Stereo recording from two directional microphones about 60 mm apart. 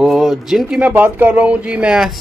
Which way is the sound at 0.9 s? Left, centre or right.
Right.